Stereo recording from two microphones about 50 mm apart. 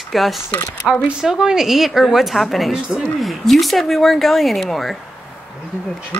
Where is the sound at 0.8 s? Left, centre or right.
Centre.